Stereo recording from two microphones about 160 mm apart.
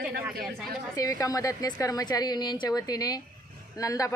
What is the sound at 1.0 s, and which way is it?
Speech, 20° left (ahead or behind).